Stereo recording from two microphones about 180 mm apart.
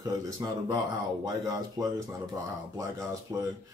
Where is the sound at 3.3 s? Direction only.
20° right (ahead or behind).